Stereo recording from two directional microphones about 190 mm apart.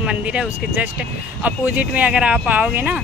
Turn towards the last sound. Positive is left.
turn(degrees=-5)  # may be behind; listen again after turning